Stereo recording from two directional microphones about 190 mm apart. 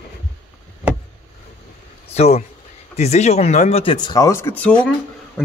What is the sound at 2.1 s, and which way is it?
Speech, 35° left (ahead or behind).